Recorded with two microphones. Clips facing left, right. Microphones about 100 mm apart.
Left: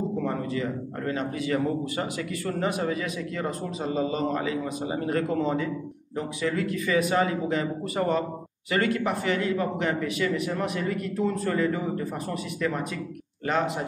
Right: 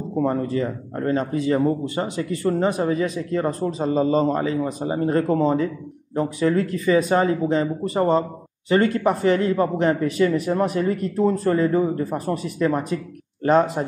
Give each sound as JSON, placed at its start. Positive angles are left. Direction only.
{"t": 0.2, "sound": "speech", "side_deg": -35}